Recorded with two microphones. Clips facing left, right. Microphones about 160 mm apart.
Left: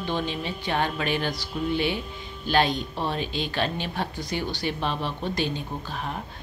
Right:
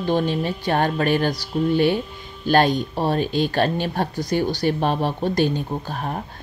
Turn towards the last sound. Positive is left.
turn(degrees=-45)  # may be behind; listen again after turning